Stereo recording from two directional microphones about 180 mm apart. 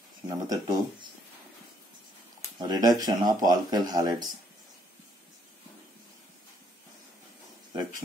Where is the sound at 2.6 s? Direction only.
25° right (ahead or behind).